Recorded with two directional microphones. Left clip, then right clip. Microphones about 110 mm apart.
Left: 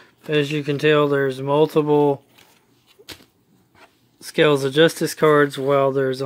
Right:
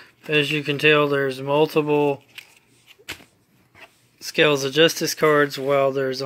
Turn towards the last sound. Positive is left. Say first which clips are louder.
# left 2 dB
turn(degrees=90)